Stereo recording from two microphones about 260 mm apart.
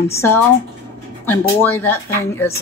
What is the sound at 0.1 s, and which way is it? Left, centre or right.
Speech, centre.